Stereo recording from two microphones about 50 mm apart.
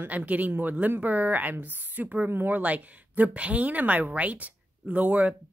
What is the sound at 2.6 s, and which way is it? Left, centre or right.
A woman's voice, right.